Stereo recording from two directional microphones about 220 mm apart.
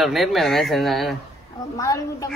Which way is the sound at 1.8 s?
15° left (ahead or behind).